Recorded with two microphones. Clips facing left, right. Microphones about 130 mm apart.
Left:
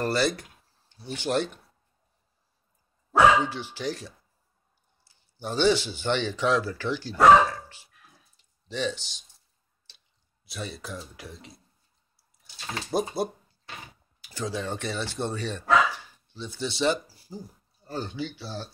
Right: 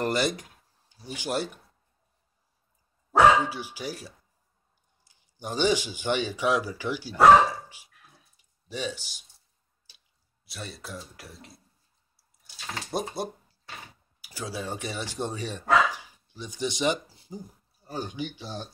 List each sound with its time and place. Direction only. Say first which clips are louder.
0.0 s speech: left 1 dB; 15° right (ahead or behind)
3.1 s speech: even; 10° right (ahead or behind)
8.4 s drip: left 3 dB; 10° right (ahead or behind)
10.4 s speech: left 4 dB; centre (ahead or behind)
12.2 s water: left 1 dB; centre (ahead or behind)
14.2 s speech: left 3 dB; 10° right (ahead or behind)